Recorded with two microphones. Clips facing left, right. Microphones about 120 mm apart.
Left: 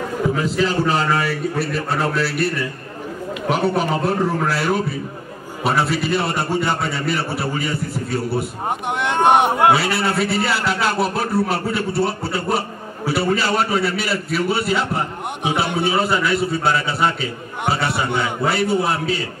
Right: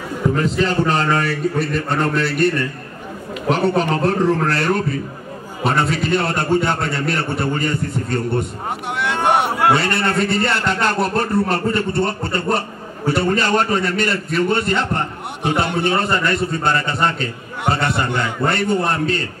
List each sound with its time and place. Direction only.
0.3 s a man's voice: 5° left (ahead or behind)
8.6 s speech: 20° left (ahead or behind)
9.7 s a man's voice: 5° left (ahead or behind)